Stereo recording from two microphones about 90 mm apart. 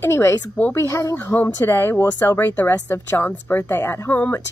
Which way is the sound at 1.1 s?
25° left (ahead or behind).